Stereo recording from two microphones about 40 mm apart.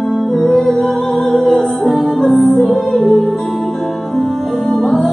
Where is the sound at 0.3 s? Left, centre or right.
Centre.